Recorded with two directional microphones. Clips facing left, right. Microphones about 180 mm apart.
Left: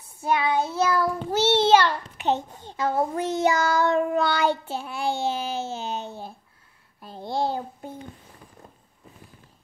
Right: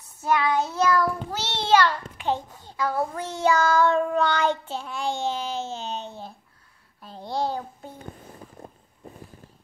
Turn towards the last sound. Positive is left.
turn(degrees=20)  # may be behind; listen again after turning